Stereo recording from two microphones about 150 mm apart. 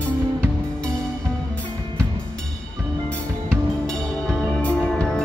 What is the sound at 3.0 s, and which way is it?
Music, 5° left (ahead or behind).